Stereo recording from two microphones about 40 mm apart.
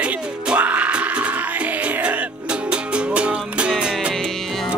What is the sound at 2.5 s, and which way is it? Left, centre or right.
Music, right.